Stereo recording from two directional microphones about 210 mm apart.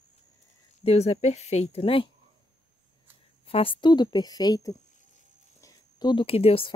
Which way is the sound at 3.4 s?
25° left (ahead or behind).